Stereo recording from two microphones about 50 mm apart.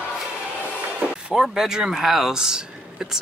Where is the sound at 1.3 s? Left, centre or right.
Centre.